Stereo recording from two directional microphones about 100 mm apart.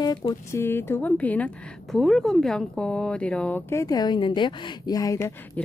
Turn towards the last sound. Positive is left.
turn(degrees=40)  # may be behind; listen again after turning